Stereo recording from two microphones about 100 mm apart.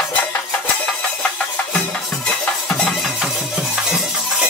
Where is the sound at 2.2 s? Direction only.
10° left (ahead or behind).